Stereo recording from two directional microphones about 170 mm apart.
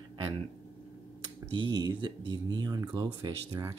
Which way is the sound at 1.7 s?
25° right (ahead or behind).